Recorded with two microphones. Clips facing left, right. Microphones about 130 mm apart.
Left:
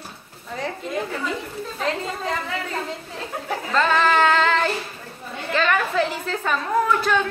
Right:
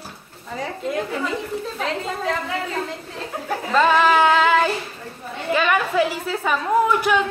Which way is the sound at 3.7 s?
10° right (ahead or behind).